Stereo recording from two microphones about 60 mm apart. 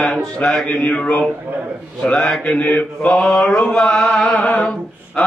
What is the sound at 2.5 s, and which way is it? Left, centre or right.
Mantra, left.